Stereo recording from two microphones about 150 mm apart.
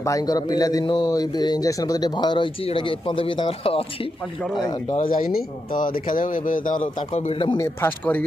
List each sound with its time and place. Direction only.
0.0 s a man's voice: 25° left (ahead or behind)
4.6 s a man's voice: 30° left (ahead or behind)
5.0 s speech: 70° left (ahead or behind)
7.0 s speech: 45° left (ahead or behind)
7.6 s speech: 15° left (ahead or behind)